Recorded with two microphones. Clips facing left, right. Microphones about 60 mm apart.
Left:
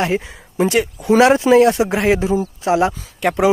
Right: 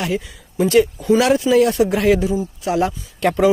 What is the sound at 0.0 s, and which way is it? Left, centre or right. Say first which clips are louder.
Speech: left 3 dB; left.